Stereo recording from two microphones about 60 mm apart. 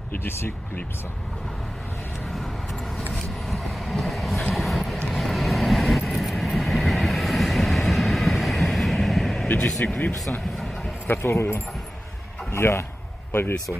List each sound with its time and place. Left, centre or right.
3.1 s vehicle: centre
9.8 s speech: left
11.2 s a man's voice: left